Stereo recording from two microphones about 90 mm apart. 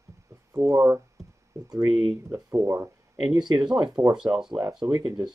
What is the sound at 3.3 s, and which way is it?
Speech, 50° right (ahead or behind).